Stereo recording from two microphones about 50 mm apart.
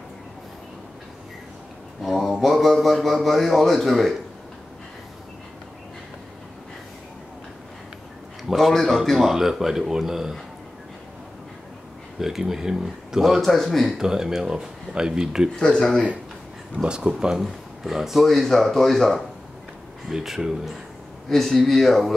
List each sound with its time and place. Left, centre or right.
2.0 s a man's voice: centre
8.5 s a man's voice: centre
12.2 s speech: centre
15.6 s speech: centre
16.7 s speech: centre
17.4 s a man's voice: centre
20.1 s a man's voice: centre